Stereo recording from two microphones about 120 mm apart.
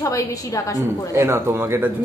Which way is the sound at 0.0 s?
30° left (ahead or behind).